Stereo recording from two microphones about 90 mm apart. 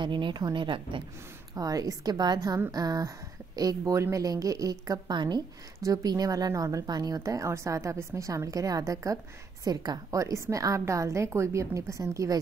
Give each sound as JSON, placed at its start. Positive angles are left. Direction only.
{"t": 0.0, "sound": "speech", "side_deg": -65}
{"t": 1.5, "sound": "a woman's voice", "side_deg": -40}
{"t": 5.8, "sound": "speech", "side_deg": -40}